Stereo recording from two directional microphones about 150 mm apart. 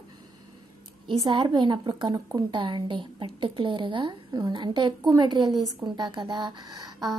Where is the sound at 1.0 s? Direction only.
30° right (ahead or behind).